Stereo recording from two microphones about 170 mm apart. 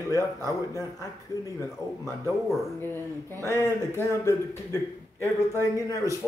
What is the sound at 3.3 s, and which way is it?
Speech, 15° left (ahead or behind).